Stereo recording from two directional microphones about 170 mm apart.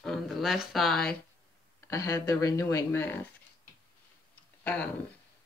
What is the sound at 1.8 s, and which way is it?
Speech, 15° left (ahead or behind).